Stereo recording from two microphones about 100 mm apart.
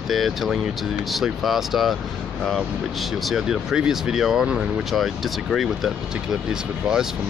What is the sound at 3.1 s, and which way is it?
Speech, centre (ahead or behind).